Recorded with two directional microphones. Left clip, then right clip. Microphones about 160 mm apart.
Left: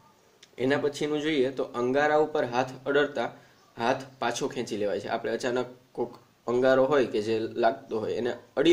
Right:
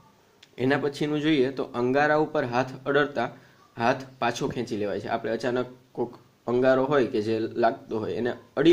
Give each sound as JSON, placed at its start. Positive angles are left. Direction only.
{"t": 0.6, "sound": "speech", "side_deg": -40}